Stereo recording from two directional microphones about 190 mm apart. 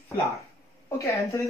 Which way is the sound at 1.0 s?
15° left (ahead or behind).